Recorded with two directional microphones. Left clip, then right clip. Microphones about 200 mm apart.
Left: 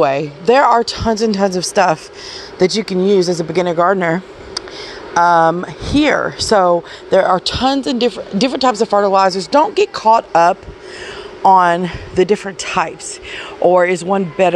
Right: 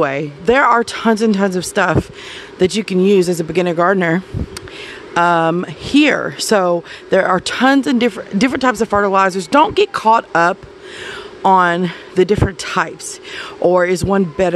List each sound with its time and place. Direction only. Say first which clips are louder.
0.0 s speech: left 2 dB; 25° right (ahead or behind)
3.0 s speech: right 1 dB; 60° right (ahead or behind)
3.3 s speech: left 1 dB; 30° right (ahead or behind)